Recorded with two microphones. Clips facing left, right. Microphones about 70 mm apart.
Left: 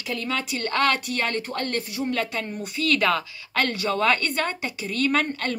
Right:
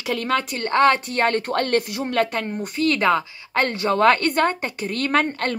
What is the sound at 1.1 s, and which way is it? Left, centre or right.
A woman's voice, right.